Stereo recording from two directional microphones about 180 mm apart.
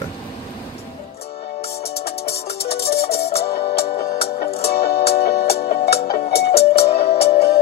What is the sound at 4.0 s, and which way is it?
Music, 55° left (ahead or behind).